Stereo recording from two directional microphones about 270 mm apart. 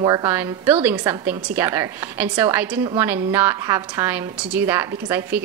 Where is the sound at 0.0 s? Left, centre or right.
Centre.